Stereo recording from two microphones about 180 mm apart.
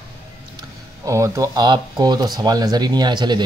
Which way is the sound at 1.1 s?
15° right (ahead or behind).